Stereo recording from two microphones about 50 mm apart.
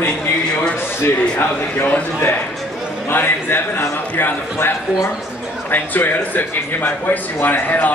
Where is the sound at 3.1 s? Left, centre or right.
Left.